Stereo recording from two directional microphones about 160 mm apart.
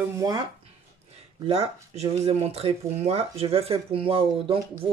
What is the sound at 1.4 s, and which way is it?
Speech, 40° right (ahead or behind).